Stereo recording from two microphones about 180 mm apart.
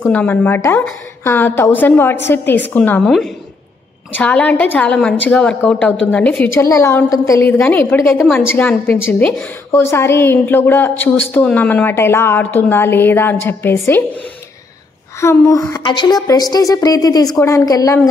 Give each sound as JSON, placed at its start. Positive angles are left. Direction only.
{"t": 0.0, "sound": "a woman's voice", "side_deg": 10}
{"t": 15.1, "sound": "a woman's voice", "side_deg": 15}